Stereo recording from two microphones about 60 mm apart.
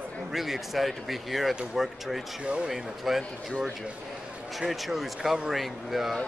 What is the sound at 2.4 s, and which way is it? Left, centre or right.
Speech, centre.